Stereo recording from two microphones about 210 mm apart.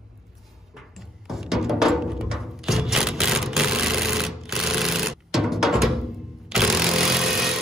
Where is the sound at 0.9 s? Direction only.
Centre (ahead or behind).